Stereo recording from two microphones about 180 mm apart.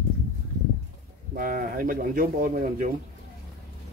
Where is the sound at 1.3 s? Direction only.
55° right (ahead or behind).